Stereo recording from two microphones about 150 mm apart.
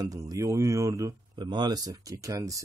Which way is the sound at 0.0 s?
25° right (ahead or behind).